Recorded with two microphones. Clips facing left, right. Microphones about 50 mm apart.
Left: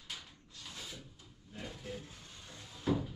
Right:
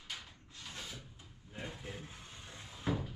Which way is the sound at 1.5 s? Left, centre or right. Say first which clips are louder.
Left 1 dB; right.